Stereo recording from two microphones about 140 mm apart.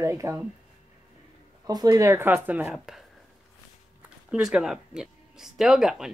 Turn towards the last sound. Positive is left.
turn(degrees=-5)  # may be behind; listen again after turning